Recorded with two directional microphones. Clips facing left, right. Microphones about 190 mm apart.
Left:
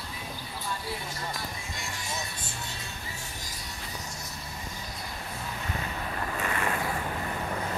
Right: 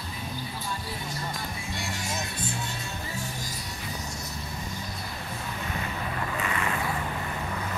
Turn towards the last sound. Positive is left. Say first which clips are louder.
# right 1 dB
turn(degrees=45)  # may be behind; listen again after turning